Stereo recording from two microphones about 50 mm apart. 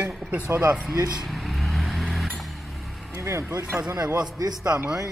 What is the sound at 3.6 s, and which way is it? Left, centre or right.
Speech, right.